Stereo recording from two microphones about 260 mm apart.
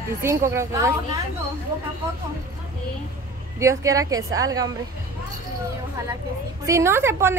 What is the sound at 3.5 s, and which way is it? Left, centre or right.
Speech, centre.